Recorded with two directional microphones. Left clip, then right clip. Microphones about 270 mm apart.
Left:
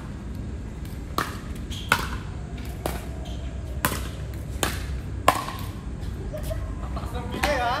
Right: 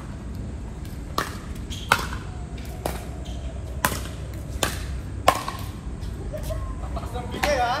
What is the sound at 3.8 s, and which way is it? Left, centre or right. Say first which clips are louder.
Chop: right 2 dB; centre.